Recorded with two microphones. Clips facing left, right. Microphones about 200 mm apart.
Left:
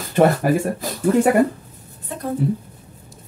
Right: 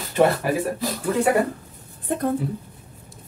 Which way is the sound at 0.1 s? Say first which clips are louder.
Left 3 dB; 45° left (ahead or behind).